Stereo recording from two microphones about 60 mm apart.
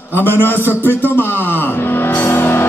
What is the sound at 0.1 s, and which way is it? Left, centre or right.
Speech, left.